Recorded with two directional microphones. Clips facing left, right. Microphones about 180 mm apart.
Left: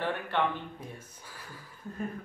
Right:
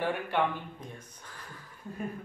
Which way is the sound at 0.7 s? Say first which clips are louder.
Left 1 dB; 10° left (ahead or behind).